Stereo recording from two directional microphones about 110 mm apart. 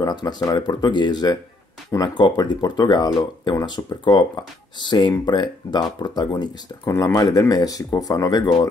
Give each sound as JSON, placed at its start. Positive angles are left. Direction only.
{"t": 0.0, "sound": "speech", "side_deg": 40}